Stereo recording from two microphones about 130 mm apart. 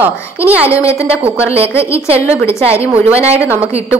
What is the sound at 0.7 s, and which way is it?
A woman's voice, 20° left (ahead or behind).